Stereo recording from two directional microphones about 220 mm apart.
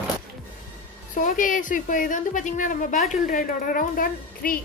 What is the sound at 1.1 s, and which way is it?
A woman's voice, 35° left (ahead or behind).